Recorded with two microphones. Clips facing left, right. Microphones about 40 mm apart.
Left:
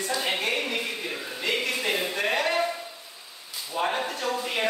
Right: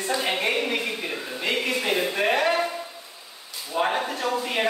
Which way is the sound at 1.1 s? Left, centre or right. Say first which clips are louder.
Right 1 dB; centre.